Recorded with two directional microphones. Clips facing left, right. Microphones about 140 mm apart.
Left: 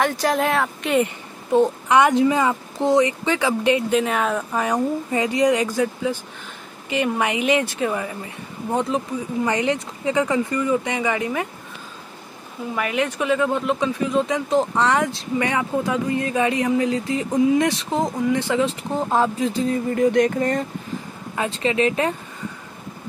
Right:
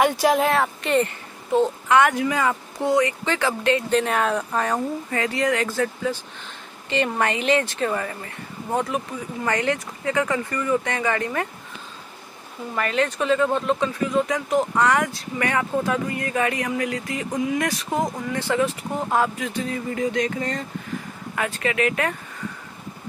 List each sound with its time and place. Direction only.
0.0 s speech: 10° right (ahead or behind)
1.0 s speech: 15° left (ahead or behind)
4.0 s speech: centre (ahead or behind)
12.7 s speech: 15° left (ahead or behind); by 20.1 s 35° left (ahead or behind)
20.1 s speech: 55° left (ahead or behind)
21.4 s speech: 20° left (ahead or behind)